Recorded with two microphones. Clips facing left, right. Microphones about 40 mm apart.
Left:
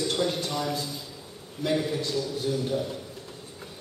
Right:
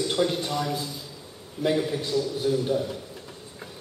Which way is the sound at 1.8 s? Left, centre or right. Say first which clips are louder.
Right 2 dB; centre.